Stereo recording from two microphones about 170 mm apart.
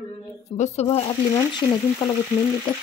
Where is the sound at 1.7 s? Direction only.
25° left (ahead or behind).